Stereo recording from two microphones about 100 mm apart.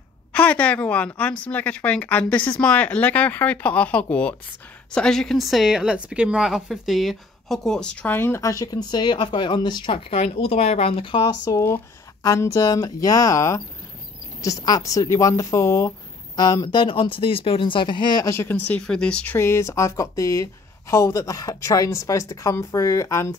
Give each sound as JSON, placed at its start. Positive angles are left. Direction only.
{"t": 0.3, "sound": "speech", "side_deg": 15}
{"t": 8.1, "sound": "speech", "side_deg": 20}
{"t": 8.4, "sound": "speech", "side_deg": 35}
{"t": 11.4, "sound": "speech", "side_deg": 30}
{"t": 16.3, "sound": "speech", "side_deg": 45}
{"t": 18.2, "sound": "speech", "side_deg": 25}
{"t": 18.9, "sound": "speech", "side_deg": 10}
{"t": 19.3, "sound": "speech", "side_deg": 25}